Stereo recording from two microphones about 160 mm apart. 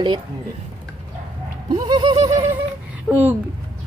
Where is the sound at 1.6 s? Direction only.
25° right (ahead or behind).